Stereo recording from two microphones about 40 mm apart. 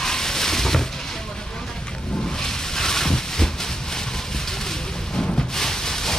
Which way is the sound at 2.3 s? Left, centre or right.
Centre.